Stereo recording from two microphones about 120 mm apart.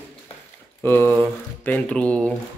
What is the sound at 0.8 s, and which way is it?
Speech, 15° left (ahead or behind).